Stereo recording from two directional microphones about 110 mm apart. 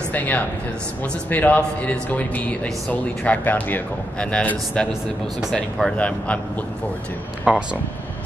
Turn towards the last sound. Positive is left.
turn(degrees=-10)  # may be behind; listen again after turning